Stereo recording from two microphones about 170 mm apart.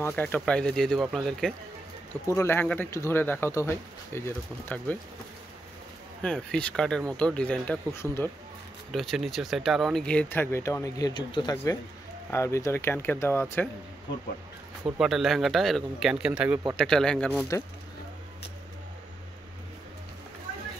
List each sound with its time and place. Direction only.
0.0 s a man's voice: 10° left (ahead or behind)
2.2 s speech: 15° left (ahead or behind)
6.2 s a man's voice: 5° left (ahead or behind)
8.9 s speech: centre (ahead or behind)
15.0 s a man's voice: centre (ahead or behind)
16.7 s a man's voice: 5° left (ahead or behind)
17.5 s speech: 20° left (ahead or behind)